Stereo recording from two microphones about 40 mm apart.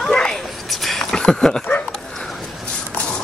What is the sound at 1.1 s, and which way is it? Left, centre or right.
Speech, left.